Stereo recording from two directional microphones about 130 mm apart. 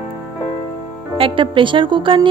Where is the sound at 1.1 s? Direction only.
40° right (ahead or behind).